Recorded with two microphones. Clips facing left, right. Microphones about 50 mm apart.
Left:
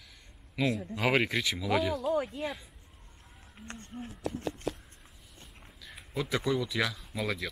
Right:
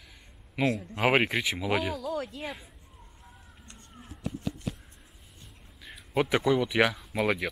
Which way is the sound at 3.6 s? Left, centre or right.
Left.